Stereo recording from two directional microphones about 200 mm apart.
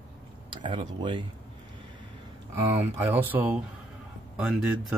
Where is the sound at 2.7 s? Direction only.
10° right (ahead or behind).